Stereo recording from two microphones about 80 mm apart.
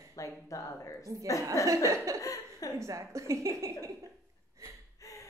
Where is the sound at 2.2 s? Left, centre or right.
Left.